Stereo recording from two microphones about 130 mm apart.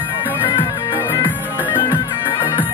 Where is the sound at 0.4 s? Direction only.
40° left (ahead or behind).